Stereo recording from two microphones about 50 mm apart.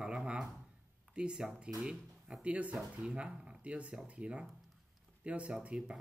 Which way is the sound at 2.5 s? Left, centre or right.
Right.